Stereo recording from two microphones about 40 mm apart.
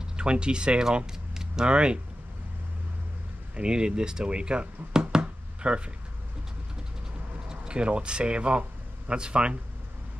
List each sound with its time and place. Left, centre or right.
0.0 s speech: right
1.3 s a sound: centre
1.7 s speech: right
3.5 s speech: right
5.2 s knock: right
7.4 s speech: right